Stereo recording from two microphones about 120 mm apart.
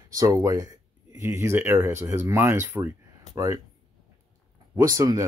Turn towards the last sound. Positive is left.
turn(degrees=-30)  # may be behind; listen again after turning